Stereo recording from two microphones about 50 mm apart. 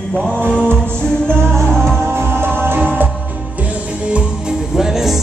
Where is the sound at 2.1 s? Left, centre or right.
Right.